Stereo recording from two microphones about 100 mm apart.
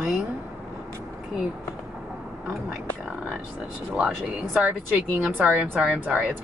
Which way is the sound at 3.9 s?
10° right (ahead or behind).